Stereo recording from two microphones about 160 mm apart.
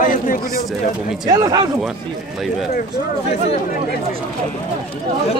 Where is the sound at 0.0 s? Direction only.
55° left (ahead or behind).